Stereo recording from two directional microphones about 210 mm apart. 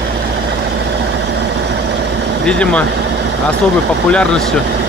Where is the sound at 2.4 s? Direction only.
5° left (ahead or behind).